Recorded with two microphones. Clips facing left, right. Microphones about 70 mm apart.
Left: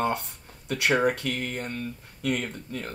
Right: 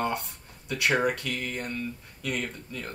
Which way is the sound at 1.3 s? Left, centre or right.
Left.